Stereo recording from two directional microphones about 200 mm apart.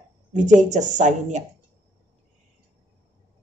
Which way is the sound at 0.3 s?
35° right (ahead or behind).